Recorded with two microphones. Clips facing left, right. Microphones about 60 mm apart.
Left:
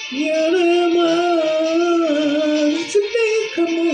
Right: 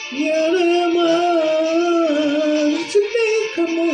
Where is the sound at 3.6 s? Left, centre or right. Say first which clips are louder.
Left 1 dB; centre.